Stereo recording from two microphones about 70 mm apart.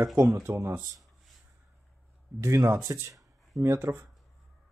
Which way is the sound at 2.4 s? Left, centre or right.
Right.